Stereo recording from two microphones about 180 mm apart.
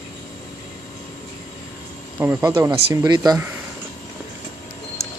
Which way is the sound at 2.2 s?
15° right (ahead or behind).